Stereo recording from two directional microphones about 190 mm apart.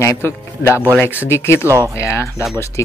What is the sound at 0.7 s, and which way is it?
Speech, 10° right (ahead or behind).